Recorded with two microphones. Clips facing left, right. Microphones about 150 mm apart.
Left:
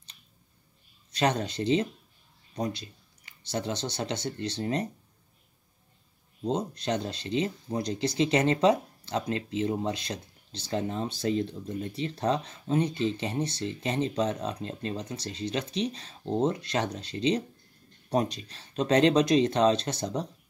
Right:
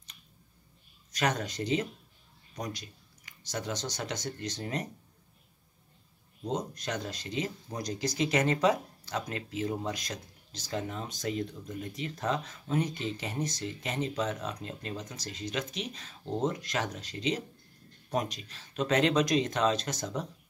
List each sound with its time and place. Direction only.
1.1 s speech: 30° left (ahead or behind)
6.4 s speech: 30° left (ahead or behind)